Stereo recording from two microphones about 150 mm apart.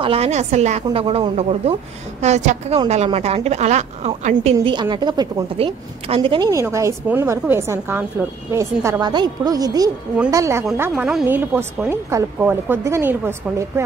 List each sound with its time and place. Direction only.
0.0 s a woman's voice: 40° right (ahead or behind)
4.6 s speech: 30° right (ahead or behind)
5.6 s speech: 40° right (ahead or behind)
6.5 s a woman's voice: 20° right (ahead or behind)
10.8 s a woman's voice: 5° right (ahead or behind)